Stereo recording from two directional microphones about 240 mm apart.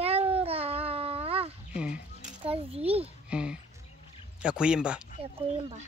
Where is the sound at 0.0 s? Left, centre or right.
Right.